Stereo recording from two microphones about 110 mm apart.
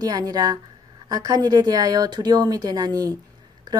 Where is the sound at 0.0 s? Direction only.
35° right (ahead or behind).